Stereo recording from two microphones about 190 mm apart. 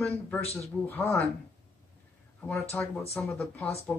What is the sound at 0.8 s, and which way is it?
Speech, 10° left (ahead or behind).